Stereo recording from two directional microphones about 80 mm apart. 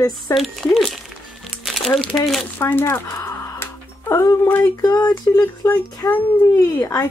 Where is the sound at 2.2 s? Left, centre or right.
Centre.